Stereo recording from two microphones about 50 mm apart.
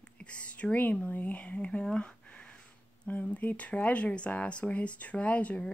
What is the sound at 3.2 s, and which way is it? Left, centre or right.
Speech, left.